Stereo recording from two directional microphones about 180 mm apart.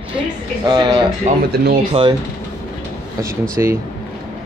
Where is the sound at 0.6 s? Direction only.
25° right (ahead or behind).